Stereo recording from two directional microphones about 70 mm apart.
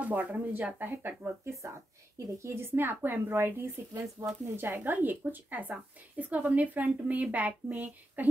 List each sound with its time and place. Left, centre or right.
0.0 s a woman's voice: right
2.1 s speech: right
4.2 s speech: right
4.6 s a woman's voice: right